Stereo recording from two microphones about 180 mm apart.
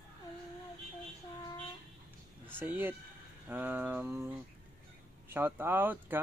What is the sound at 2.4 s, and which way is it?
Speech, 10° right (ahead or behind).